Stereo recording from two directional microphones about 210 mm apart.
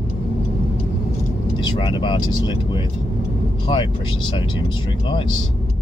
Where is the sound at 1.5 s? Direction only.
20° left (ahead or behind).